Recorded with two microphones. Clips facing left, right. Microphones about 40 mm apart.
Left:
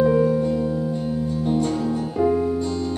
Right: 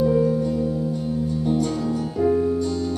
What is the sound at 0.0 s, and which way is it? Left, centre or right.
Music, left.